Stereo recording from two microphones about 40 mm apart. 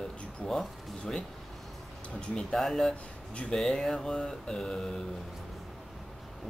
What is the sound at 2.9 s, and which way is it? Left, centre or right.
Speech, left.